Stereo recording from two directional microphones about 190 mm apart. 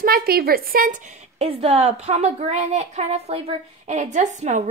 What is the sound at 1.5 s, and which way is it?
A woman's voice, 30° right (ahead or behind).